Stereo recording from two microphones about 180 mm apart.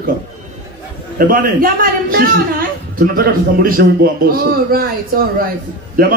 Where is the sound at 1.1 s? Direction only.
50° right (ahead or behind).